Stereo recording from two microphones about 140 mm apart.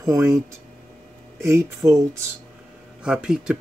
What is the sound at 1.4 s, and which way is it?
Speech, 25° right (ahead or behind).